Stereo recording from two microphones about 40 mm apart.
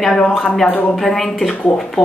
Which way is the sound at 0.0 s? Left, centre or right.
Centre.